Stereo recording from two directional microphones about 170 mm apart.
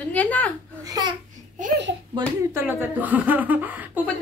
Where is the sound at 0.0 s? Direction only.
10° left (ahead or behind).